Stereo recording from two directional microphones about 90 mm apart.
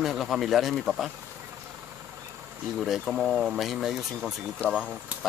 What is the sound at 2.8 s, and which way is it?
Speech, 5° right (ahead or behind).